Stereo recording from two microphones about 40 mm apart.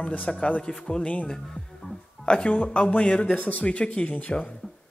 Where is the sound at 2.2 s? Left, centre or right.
Left.